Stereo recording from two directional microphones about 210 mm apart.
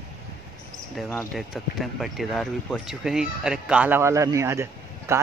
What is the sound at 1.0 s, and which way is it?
Speech, centre (ahead or behind).